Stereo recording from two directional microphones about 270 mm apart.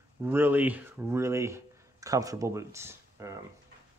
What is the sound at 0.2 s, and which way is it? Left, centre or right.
Speech, centre.